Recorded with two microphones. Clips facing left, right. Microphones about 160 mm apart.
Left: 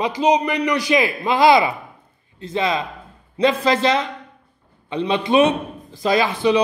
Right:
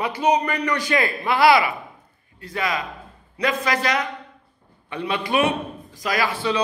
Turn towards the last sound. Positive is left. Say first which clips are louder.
# left 6 dB
turn(degrees=20)  # may be behind; listen again after turning